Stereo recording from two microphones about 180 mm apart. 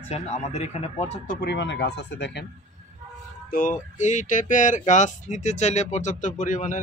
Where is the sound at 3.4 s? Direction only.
50° left (ahead or behind).